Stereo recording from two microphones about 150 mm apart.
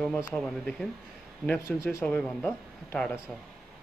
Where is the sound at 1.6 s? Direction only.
20° left (ahead or behind).